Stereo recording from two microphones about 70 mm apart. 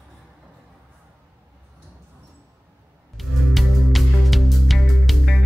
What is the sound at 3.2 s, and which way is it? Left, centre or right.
Music, centre.